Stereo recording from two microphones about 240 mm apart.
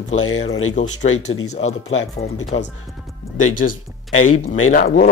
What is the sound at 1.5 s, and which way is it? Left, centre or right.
Speech, left.